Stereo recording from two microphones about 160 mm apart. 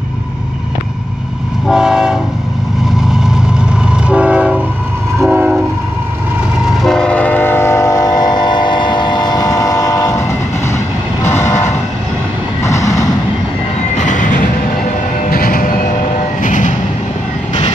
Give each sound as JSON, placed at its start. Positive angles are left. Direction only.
{"t": 1.7, "sound": "train", "side_deg": -5}
{"t": 4.1, "sound": "train", "side_deg": -5}
{"t": 6.6, "sound": "train", "side_deg": 0}
{"t": 12.6, "sound": "vehicle", "side_deg": 20}
{"t": 13.9, "sound": "music", "side_deg": 55}
{"t": 15.2, "sound": "train", "side_deg": 65}